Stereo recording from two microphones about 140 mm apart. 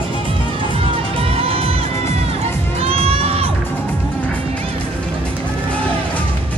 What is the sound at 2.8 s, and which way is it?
Children shouting, 45° right (ahead or behind).